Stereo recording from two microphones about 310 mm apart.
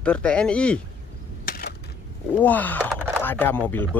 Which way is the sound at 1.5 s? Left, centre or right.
Left.